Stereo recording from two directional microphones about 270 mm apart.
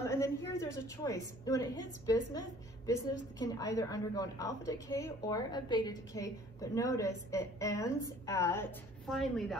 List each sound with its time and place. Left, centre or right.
0.0 s a woman's voice: centre